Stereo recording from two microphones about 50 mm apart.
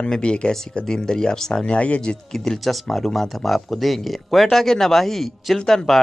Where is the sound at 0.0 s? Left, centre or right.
Centre.